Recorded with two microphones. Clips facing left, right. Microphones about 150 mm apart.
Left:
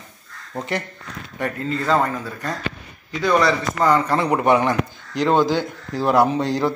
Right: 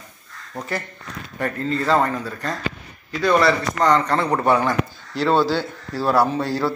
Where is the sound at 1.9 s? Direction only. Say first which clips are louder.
Even; centre (ahead or behind).